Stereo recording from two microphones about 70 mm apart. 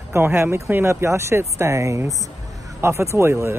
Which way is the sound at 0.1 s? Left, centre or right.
Right.